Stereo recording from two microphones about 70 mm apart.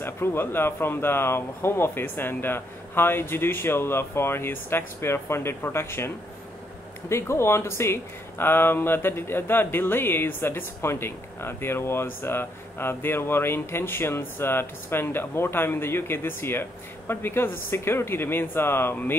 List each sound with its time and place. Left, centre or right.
0.0 s speech: left